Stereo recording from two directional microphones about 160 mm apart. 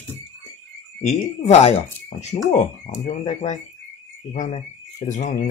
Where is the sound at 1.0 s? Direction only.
45° left (ahead or behind).